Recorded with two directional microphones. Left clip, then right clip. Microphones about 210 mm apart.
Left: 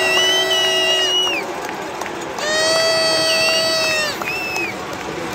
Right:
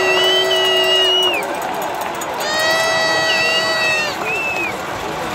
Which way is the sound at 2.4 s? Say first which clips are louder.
Even; 55° left (ahead or behind).